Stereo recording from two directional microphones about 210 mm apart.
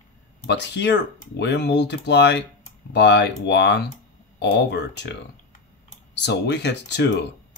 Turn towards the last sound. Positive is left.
turn(degrees=55)  # may be behind; listen again after turning